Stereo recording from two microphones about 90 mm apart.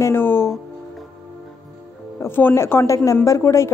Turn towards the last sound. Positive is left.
turn(degrees=35)  # may be behind; listen again after turning